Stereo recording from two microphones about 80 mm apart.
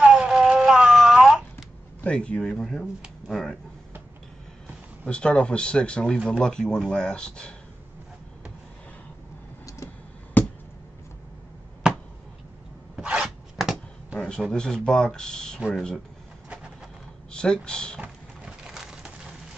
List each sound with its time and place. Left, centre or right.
0.0 s a sound: centre
2.0 s speech: centre
5.0 s speech: centre
10.4 s a sound: left
12.9 s filing: centre
14.5 s speech: centre
17.3 s a sound: centre
17.6 s speech: centre
18.0 s splinter: centre